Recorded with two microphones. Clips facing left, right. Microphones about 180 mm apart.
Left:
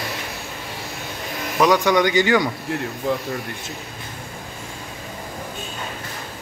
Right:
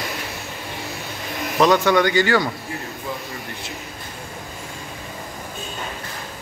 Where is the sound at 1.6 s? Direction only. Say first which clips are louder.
Even; 15° left (ahead or behind).